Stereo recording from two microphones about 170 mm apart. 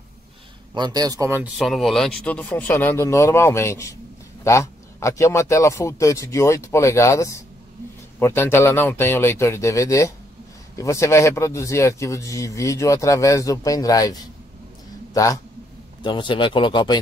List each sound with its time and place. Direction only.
0.7 s a man's voice: 25° right (ahead or behind)
1.6 s speech: centre (ahead or behind); by 17.0 s 25° left (ahead or behind)